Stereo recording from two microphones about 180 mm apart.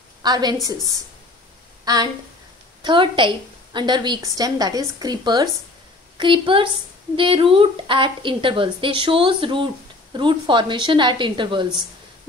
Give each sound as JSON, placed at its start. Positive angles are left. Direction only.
{"t": 0.2, "sound": "a woman's voice", "side_deg": -20}
{"t": 1.9, "sound": "a woman's voice", "side_deg": -20}